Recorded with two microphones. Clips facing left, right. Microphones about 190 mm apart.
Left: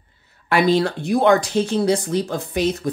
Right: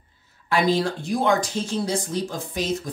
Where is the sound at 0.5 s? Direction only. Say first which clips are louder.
Left 4 dB; 65° left (ahead or behind).